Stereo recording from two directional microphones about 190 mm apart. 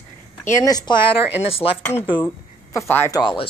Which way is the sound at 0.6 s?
20° left (ahead or behind).